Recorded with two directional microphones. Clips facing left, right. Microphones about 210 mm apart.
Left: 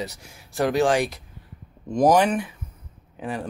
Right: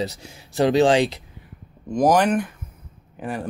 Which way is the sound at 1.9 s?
Centre (ahead or behind).